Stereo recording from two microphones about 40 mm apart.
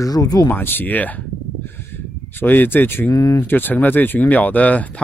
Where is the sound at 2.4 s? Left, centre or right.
Left.